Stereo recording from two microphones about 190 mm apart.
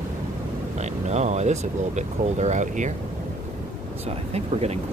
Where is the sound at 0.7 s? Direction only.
35° right (ahead or behind).